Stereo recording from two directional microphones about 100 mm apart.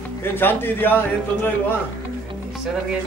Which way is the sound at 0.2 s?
20° left (ahead or behind).